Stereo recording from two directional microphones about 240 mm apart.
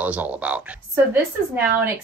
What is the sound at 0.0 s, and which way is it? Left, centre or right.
Speech, centre.